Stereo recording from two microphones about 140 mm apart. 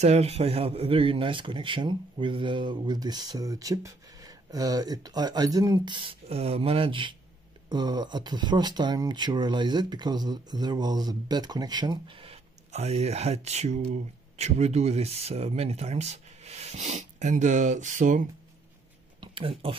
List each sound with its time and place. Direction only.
0.0 s speech: 50° right (ahead or behind)
19.2 s speech: 40° right (ahead or behind)